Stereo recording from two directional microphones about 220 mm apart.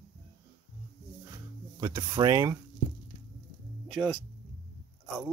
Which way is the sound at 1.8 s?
15° right (ahead or behind).